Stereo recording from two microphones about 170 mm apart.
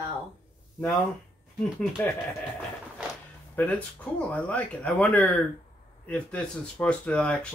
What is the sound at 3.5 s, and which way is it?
Speech, 10° left (ahead or behind).